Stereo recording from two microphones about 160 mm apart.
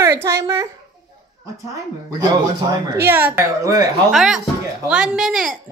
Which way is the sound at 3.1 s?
15° right (ahead or behind).